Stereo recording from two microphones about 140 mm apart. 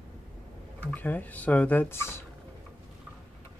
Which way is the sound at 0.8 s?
10° left (ahead or behind).